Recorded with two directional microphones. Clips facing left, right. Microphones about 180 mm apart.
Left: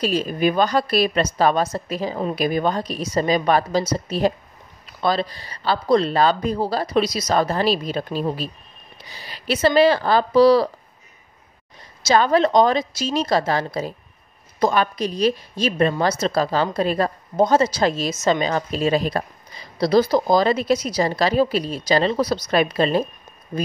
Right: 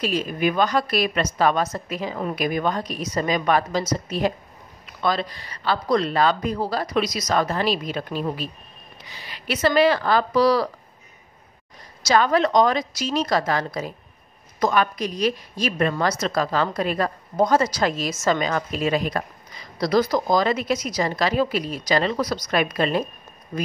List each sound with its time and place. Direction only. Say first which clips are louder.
0.0 s a woman's voice: left 3 dB; 35° left (ahead or behind)
12.0 s a woman's voice: left 2 dB; 30° left (ahead or behind)